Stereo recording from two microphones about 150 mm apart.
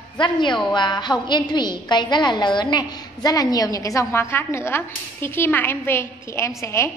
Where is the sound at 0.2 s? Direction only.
30° left (ahead or behind).